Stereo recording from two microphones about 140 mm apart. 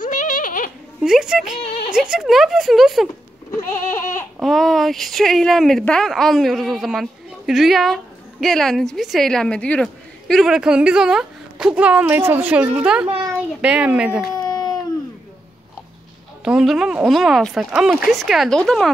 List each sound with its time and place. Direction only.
0.0 s goat: 70° left (ahead or behind)
1.0 s speech: 5° right (ahead or behind)
1.6 s a sound: 45° left (ahead or behind)
1.9 s speech: 5° right (ahead or behind)
3.5 s goat: 20° left (ahead or behind)
4.4 s a woman's voice: centre (ahead or behind)
14.4 s a sound: 30° left (ahead or behind)
16.4 s speech: 5° right (ahead or behind)